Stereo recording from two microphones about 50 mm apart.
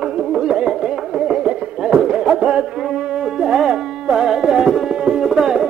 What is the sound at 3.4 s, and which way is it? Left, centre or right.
Music, centre.